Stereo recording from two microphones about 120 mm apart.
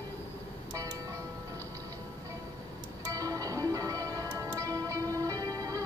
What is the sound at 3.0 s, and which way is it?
Music, 30° right (ahead or behind).